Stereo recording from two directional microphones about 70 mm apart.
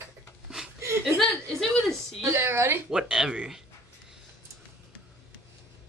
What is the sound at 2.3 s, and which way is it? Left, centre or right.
Speech, right.